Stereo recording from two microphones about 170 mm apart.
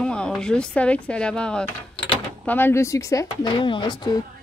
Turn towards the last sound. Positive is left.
turn(degrees=25)  # may be behind; listen again after turning